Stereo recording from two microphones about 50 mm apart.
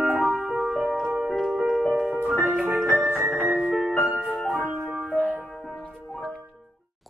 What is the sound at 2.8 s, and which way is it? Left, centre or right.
Music, right.